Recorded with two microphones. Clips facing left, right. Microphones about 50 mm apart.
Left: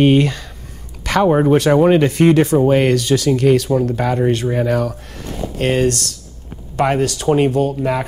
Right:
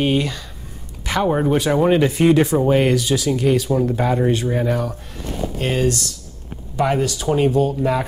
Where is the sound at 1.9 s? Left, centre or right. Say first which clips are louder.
Left 3 dB; left.